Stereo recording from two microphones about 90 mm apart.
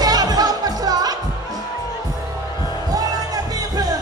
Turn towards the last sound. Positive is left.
turn(degrees=-45)  # may be behind; listen again after turning